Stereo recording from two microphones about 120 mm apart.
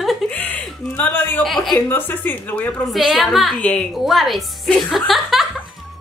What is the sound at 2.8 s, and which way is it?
Speech, centre (ahead or behind).